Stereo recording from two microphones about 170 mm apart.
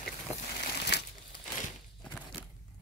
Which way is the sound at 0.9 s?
85° left.